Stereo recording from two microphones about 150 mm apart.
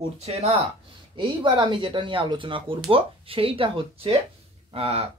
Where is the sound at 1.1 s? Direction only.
35° right (ahead or behind).